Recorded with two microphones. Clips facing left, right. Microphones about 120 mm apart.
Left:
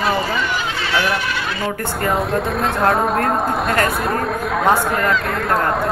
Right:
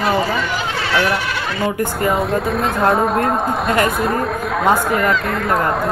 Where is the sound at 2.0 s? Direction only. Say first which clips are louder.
Left 1 dB; centre (ahead or behind).